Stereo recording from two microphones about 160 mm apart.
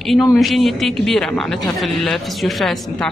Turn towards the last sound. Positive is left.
turn(degrees=0)  # may be behind; listen again after turning